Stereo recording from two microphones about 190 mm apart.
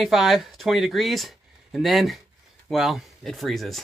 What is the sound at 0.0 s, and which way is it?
Speech, centre (ahead or behind).